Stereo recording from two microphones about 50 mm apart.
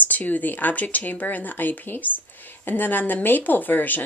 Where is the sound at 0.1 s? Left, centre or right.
Left.